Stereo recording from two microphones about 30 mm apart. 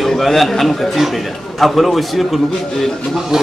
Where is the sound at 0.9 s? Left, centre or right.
Centre.